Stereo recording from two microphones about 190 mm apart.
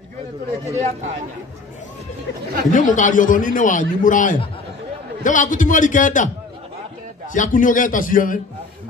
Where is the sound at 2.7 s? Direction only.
45° left (ahead or behind).